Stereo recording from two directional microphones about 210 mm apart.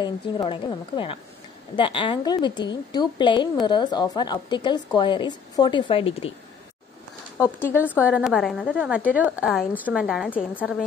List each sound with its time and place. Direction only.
0.0 s a woman's voice: 20° left (ahead or behind)
7.3 s speech: 10° left (ahead or behind)
7.8 s a woman's voice: 5° right (ahead or behind)
10.3 s speech: 10° left (ahead or behind)